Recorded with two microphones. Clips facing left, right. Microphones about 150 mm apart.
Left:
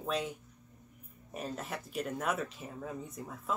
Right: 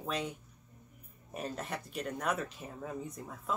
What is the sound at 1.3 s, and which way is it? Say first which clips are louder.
Speech: even; centre (ahead or behind).